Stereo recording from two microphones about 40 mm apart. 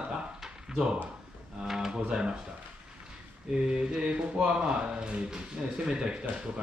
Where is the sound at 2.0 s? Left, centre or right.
Right.